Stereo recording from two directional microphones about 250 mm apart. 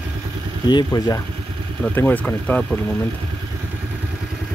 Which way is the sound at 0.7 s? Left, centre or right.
Centre.